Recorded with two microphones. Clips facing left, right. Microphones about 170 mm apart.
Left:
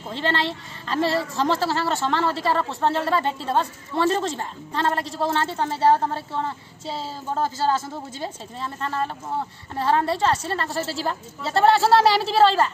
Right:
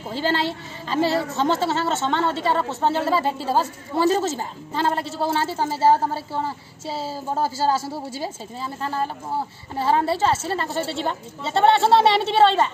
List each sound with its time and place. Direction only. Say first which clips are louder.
0.1 s a woman's voice: right 2 dB; centre (ahead or behind)
6.0 s a sound: right 1 dB; 5° right (ahead or behind)
8.1 s a woman's voice: right 2 dB; 5° right (ahead or behind)